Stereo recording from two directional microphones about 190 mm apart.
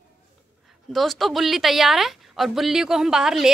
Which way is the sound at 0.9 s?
Centre (ahead or behind).